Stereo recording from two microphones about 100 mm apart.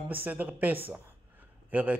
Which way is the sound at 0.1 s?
15° right (ahead or behind).